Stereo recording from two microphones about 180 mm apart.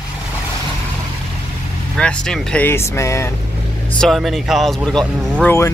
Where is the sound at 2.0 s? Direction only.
5° left (ahead or behind).